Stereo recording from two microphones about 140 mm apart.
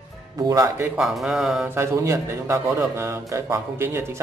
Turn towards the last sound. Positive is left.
turn(degrees=-20)  # may be behind; listen again after turning